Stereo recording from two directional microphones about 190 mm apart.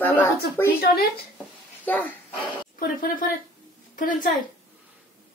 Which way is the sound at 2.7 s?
50° left (ahead or behind).